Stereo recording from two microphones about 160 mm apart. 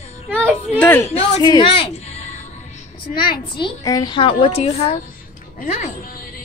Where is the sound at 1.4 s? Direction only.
25° left (ahead or behind); by 5.9 s 45° left (ahead or behind).